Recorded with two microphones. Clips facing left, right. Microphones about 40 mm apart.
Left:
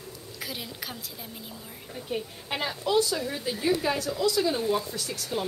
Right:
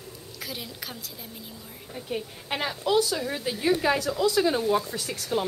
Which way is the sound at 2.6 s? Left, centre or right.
Centre.